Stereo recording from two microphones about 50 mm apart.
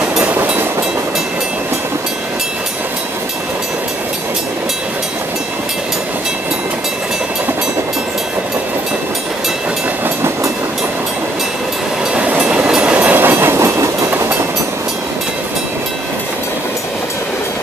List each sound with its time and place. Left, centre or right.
12.4 s train: centre
12.9 s train: right
13.4 s train: right